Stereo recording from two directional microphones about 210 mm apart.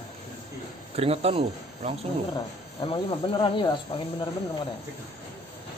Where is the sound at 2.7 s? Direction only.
25° left (ahead or behind).